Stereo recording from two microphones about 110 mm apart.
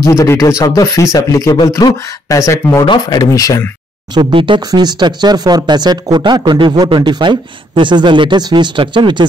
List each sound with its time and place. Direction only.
0.0 s speech: 30° left (ahead or behind)
4.1 s speech: 50° right (ahead or behind)
4.6 s speech: 40° right (ahead or behind)